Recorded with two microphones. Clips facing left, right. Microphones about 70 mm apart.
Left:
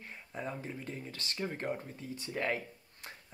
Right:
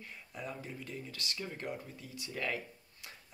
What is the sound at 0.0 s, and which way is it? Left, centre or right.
Speech, left.